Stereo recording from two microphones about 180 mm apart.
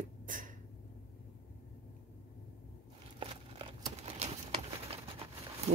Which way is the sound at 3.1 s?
30° right (ahead or behind).